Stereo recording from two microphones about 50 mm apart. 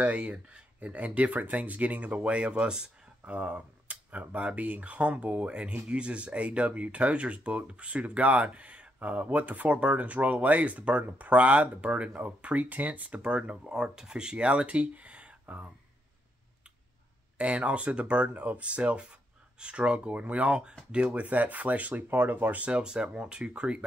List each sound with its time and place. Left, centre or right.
0.0 s speech: right
17.4 s speech: right
22.6 s speech: centre